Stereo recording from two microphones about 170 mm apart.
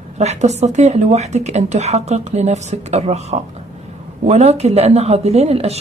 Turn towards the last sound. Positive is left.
turn(degrees=-40)  # may be behind; listen again after turning